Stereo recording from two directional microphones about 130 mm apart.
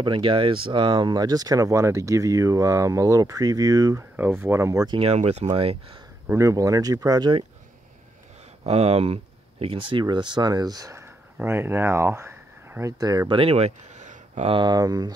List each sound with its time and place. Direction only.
0.0 s speech: 40° right (ahead or behind)
4.2 s speech: 20° right (ahead or behind)
4.9 s speech: 55° right (ahead or behind)
5.5 s speech: 45° right (ahead or behind)
6.2 s speech: 25° right (ahead or behind)
8.6 s speech: 50° right (ahead or behind); by 12.9 s 20° right (ahead or behind)
13.0 s speech: 30° right (ahead or behind)
13.4 s a sound: 50° right (ahead or behind)
14.5 s speech: 35° right (ahead or behind)